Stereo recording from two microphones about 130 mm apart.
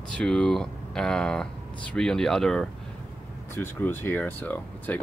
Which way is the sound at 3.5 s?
15° left (ahead or behind).